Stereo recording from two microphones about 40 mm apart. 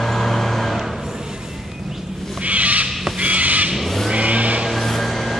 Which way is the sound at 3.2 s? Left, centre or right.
Right.